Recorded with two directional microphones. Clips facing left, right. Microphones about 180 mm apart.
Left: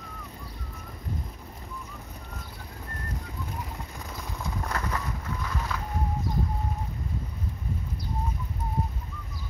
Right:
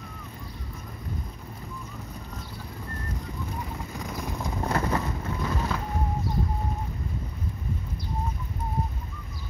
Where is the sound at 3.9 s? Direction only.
15° right (ahead or behind).